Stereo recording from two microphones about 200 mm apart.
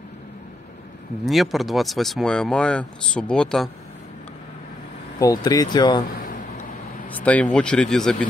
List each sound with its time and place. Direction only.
1.2 s speech: centre (ahead or behind)
5.2 s speech: 20° left (ahead or behind)
6.1 s a sound: 45° left (ahead or behind)
7.1 s speech: 5° left (ahead or behind)